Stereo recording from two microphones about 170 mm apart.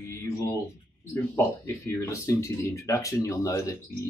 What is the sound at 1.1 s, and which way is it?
Speech, 15° left (ahead or behind).